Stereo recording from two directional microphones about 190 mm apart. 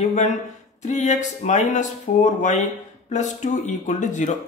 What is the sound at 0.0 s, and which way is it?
Speech, 40° left (ahead or behind).